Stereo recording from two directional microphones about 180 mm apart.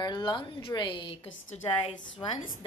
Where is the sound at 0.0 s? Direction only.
25° left (ahead or behind).